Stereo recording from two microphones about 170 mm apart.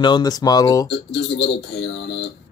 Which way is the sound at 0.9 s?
80° left.